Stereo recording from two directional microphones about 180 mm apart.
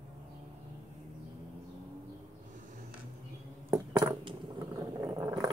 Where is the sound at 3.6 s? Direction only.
20° right (ahead or behind).